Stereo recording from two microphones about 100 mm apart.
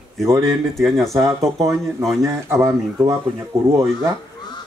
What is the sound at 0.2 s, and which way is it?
Speech, 30° right (ahead or behind).